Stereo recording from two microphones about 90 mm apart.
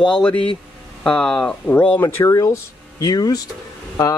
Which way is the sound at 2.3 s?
45° left (ahead or behind).